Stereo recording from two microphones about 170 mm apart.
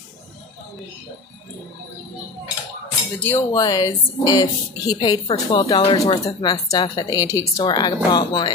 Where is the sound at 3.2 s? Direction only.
15° left (ahead or behind).